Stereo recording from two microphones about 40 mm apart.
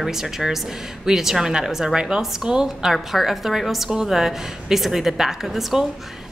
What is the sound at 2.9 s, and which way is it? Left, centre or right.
A woman's voice, centre.